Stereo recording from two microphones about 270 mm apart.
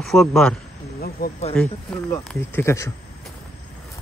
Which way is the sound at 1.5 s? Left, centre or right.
Centre.